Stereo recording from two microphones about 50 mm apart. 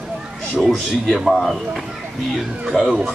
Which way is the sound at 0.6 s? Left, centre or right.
Centre.